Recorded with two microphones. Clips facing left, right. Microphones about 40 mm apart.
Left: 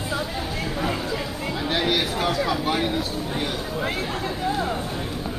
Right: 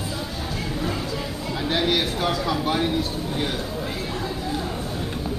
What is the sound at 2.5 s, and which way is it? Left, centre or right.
Speech, centre.